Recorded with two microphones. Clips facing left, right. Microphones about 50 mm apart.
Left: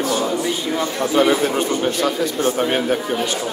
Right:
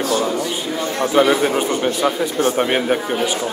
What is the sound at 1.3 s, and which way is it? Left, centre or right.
A man's voice, centre.